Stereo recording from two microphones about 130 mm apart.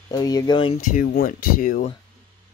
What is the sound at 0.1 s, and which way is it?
Speech, 30° left (ahead or behind).